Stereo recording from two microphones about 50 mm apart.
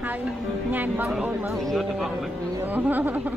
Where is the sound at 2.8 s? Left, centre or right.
Right.